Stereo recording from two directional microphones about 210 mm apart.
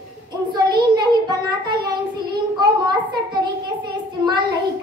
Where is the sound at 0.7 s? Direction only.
20° right (ahead or behind).